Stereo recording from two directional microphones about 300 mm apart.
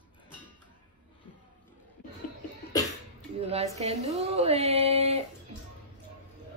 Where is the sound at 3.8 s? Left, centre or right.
Right.